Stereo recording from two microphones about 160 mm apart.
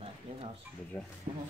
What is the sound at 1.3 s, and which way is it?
Speech, 45° right (ahead or behind).